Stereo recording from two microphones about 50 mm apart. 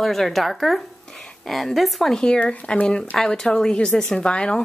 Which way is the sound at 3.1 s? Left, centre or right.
Centre.